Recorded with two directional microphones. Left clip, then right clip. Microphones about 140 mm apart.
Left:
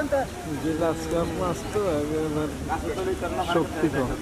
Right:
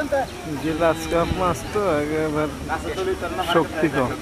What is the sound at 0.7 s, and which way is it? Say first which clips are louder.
Speech: right 7 dB; 30° right (ahead or behind).